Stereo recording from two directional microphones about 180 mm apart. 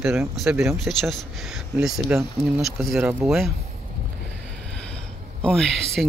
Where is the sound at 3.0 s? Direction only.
10° right (ahead or behind).